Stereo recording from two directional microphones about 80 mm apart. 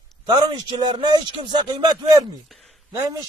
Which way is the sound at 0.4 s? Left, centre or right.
Right.